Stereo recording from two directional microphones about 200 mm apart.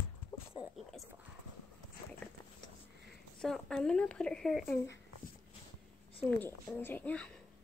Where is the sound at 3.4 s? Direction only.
5° left (ahead or behind).